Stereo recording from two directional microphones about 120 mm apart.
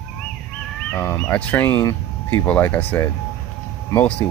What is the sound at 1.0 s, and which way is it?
Speech, 20° left (ahead or behind).